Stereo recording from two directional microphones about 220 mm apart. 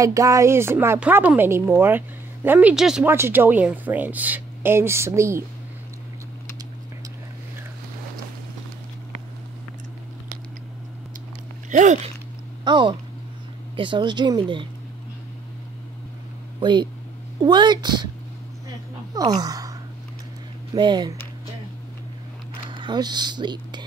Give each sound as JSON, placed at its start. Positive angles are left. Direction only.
{"t": 0.0, "sound": "a woman's voice", "side_deg": -15}
{"t": 11.7, "sound": "speech", "side_deg": -35}
{"t": 12.6, "sound": "speech", "side_deg": -20}
{"t": 16.5, "sound": "speech", "side_deg": -20}
{"t": 19.1, "sound": "speech", "side_deg": -15}
{"t": 20.7, "sound": "speech", "side_deg": -20}
{"t": 22.7, "sound": "speech", "side_deg": -20}